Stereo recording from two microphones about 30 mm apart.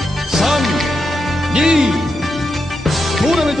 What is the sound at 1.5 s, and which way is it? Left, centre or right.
Speech, centre.